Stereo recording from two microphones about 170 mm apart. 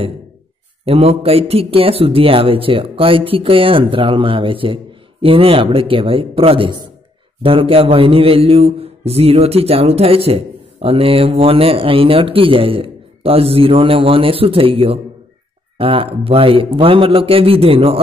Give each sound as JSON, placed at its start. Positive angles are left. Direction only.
{"t": 0.8, "sound": "a man's voice", "side_deg": -35}